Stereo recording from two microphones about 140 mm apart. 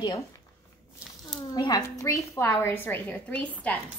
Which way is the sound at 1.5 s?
30° left (ahead or behind).